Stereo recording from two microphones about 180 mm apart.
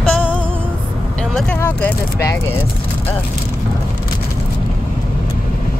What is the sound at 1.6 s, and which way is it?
Speech, 15° left (ahead or behind).